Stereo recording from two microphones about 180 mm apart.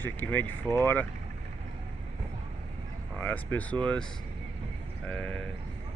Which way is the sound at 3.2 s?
10° left (ahead or behind).